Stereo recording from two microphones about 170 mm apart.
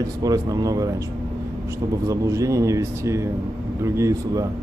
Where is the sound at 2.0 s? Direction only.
15° right (ahead or behind).